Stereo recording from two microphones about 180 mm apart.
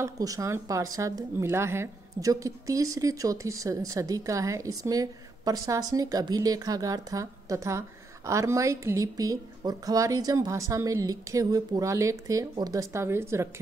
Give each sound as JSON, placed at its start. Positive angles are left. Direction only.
{"t": 0.0, "sound": "a woman's voice", "side_deg": -20}